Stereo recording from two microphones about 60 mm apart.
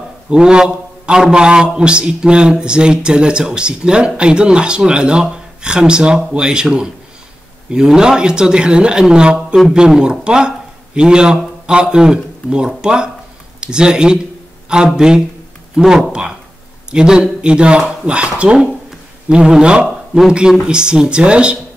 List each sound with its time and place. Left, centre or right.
0.3 s a man's voice: centre